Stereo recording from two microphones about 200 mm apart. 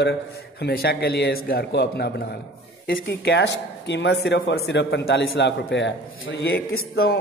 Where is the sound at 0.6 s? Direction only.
55° left (ahead or behind).